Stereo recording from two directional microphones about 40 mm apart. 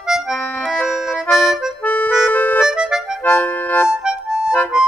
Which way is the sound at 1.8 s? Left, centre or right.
Left.